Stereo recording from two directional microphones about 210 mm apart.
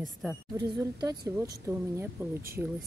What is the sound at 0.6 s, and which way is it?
Speech, 20° right (ahead or behind).